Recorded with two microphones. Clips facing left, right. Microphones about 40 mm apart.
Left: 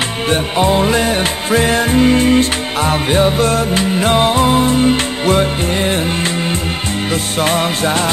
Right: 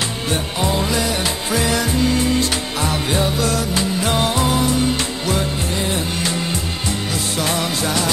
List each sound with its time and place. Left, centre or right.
0.3 s music: left
7.3 s music: left